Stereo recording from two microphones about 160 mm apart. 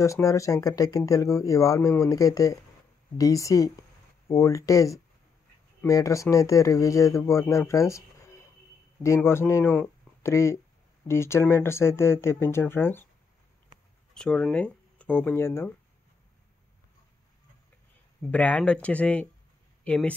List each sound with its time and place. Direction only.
0.0 s speech: 20° left (ahead or behind)
14.1 s speech: 5° left (ahead or behind)
18.3 s speech: 10° left (ahead or behind)